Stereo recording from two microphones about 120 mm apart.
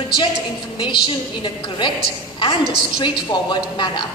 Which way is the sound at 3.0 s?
40° left (ahead or behind).